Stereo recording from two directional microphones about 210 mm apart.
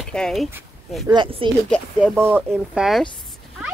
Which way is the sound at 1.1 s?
25° right (ahead or behind).